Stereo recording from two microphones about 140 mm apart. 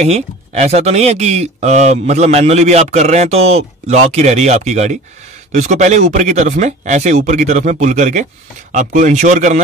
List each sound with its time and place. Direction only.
0.0 s speech: 50° right (ahead or behind)